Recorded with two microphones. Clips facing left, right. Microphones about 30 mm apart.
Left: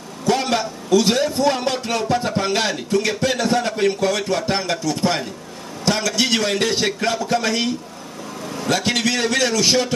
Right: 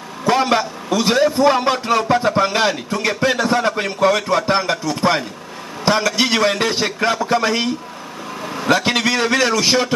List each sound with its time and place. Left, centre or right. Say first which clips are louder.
0.2 s a man's voice: right 4 dB; centre